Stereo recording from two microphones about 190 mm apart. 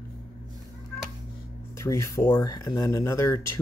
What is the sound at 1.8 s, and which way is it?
Speech, 15° left (ahead or behind).